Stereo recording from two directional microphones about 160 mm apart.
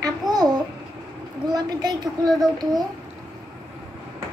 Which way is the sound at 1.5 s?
25° right (ahead or behind).